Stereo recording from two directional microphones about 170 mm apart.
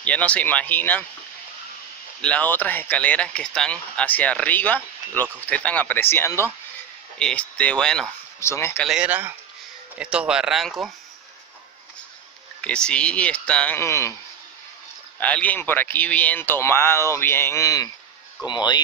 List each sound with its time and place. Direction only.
0.0 s speech: 10° left (ahead or behind)
2.2 s speech: 10° left (ahead or behind)
8.4 s speech: 15° left (ahead or behind)
8.8 s speech: 5° right (ahead or behind)
12.6 s speech: 5° left (ahead or behind)
15.1 s speech: 10° left (ahead or behind); by 18.8 s 25° left (ahead or behind)